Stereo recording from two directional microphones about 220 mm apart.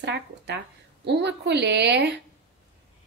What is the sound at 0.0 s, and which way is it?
A woman's voice, 50° right (ahead or behind).